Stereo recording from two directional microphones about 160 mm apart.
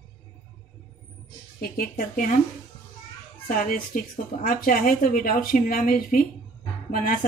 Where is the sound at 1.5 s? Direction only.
70° left (ahead or behind).